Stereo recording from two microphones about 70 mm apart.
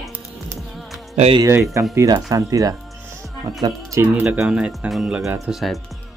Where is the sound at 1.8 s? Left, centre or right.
Right.